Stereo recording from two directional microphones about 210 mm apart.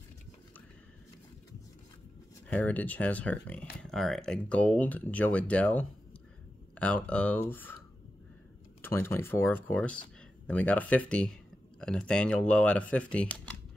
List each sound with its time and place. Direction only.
2.4 s speech: 5° left (ahead or behind)
8.8 s speech: 10° left (ahead or behind)